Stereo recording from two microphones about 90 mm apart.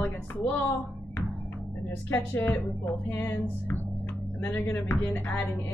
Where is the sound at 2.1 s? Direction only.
25° left (ahead or behind).